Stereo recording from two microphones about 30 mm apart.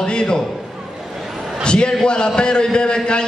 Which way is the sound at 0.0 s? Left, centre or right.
Left.